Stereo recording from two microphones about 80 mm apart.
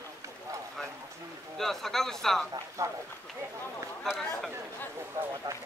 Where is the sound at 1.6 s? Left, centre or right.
Centre.